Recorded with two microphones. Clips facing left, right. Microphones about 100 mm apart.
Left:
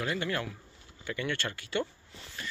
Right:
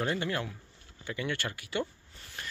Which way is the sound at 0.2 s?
20° right (ahead or behind).